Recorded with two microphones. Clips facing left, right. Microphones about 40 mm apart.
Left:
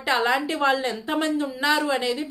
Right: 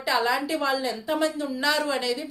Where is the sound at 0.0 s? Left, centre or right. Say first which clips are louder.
Left 2 dB; left.